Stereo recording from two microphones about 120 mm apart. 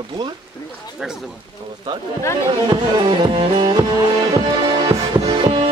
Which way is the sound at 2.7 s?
45° right (ahead or behind).